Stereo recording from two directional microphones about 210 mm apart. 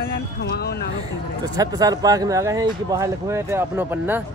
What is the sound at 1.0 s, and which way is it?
Speech, 15° right (ahead or behind).